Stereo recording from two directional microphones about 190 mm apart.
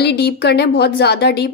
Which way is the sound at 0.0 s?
60° left (ahead or behind).